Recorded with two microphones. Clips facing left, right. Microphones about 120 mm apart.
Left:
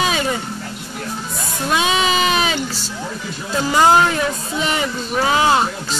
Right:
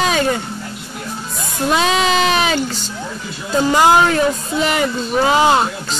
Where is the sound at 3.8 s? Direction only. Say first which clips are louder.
Even; 10° right (ahead or behind).